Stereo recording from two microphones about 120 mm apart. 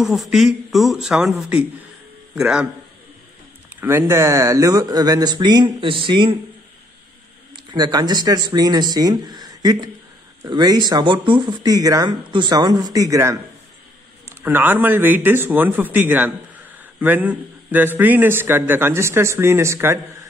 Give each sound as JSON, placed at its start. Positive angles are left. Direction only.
{"t": 0.0, "sound": "a man's voice", "side_deg": 0}
{"t": 3.8, "sound": "speech", "side_deg": -20}
{"t": 7.5, "sound": "a man's voice", "side_deg": -35}